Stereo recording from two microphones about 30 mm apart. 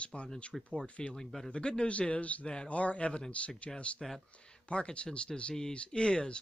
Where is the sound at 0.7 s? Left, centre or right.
Left.